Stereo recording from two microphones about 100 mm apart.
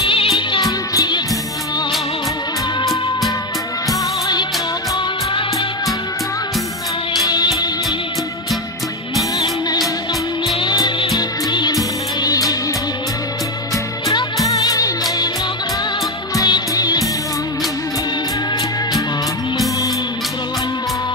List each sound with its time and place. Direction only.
0.0 s music: 60° left (ahead or behind)
0.6 s music: 40° left (ahead or behind)
7.2 s music: 40° left (ahead or behind)
9.4 s music: 40° left (ahead or behind)
14.0 s music: 35° left (ahead or behind)
16.3 s music: 40° left (ahead or behind)